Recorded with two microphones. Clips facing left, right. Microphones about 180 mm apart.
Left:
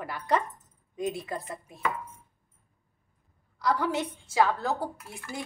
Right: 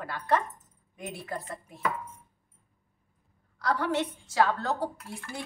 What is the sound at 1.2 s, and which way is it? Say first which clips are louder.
Speech: left 1 dB; 15° left (ahead or behind).